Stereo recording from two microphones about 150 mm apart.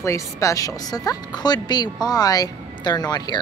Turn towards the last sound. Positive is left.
turn(degrees=30)  # may be behind; listen again after turning